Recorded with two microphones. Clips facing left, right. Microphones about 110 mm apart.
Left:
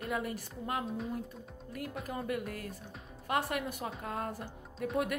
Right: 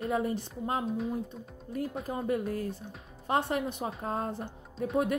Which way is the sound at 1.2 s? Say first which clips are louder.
Right 3 dB; 30° right (ahead or behind).